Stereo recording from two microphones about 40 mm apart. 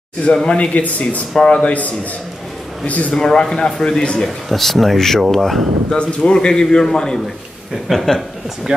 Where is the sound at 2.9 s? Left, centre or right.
Left.